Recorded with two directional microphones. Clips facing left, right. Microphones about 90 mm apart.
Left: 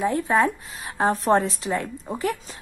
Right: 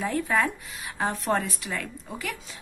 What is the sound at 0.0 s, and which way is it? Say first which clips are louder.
Speech: left 5 dB; 25° left (ahead or behind).